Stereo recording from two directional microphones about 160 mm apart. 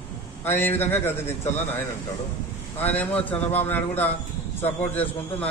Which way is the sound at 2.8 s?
10° left (ahead or behind).